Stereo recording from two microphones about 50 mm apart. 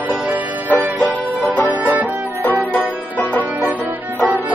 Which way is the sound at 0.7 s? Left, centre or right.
Left.